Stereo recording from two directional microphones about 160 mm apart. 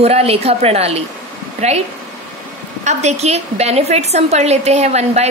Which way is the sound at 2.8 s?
45° right (ahead or behind).